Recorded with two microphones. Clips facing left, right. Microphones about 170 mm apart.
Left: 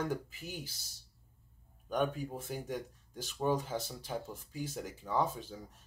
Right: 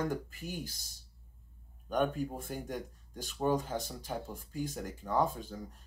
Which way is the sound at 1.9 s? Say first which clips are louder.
Right 2 dB; centre (ahead or behind).